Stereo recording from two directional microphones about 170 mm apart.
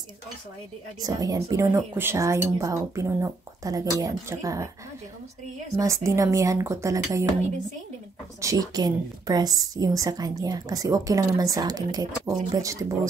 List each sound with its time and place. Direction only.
1.0 s speech: 20° right (ahead or behind)
5.8 s a woman's voice: 20° right (ahead or behind)
8.4 s a woman's voice: 20° right (ahead or behind)